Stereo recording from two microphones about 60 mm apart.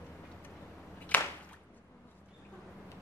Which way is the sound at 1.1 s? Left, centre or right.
Left.